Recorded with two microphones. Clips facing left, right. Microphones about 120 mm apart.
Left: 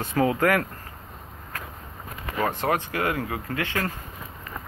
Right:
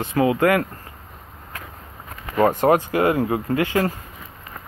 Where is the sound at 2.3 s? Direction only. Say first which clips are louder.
Right 8 dB; 45° right (ahead or behind).